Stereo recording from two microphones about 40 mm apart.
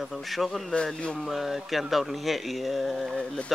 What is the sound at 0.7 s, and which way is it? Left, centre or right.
Speech, left.